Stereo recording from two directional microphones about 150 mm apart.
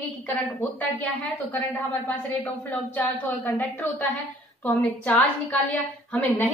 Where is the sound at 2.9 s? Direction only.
15° left (ahead or behind).